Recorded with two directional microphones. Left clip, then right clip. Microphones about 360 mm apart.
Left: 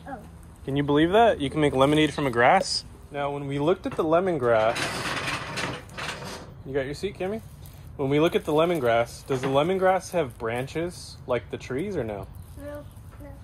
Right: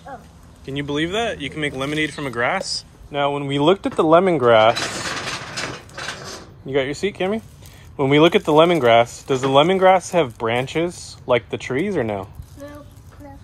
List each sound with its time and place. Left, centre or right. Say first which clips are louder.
0.7 s speech: left 1 dB; centre
3.1 s speech: right 9 dB; right
6.7 s speech: right 8 dB; right
12.6 s a sound: right 1 dB; centre